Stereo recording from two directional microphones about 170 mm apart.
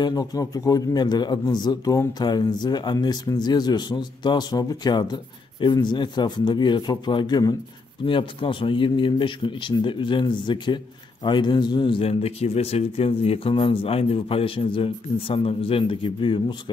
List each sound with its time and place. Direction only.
0.0 s a man's voice: 20° left (ahead or behind)